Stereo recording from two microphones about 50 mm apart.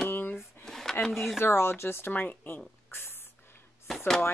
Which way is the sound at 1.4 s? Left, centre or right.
Left.